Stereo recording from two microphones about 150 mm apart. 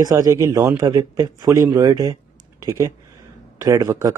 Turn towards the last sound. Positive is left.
turn(degrees=-25)  # may be behind; listen again after turning